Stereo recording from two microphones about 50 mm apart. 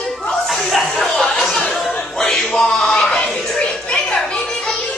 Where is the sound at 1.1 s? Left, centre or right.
Centre.